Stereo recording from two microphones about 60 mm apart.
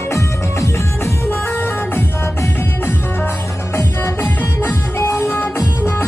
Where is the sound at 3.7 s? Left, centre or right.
Left.